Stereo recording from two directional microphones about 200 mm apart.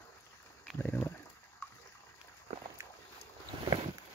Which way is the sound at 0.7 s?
10° left (ahead or behind).